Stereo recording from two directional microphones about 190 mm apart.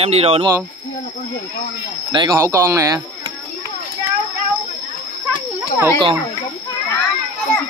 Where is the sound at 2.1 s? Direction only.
20° right (ahead or behind).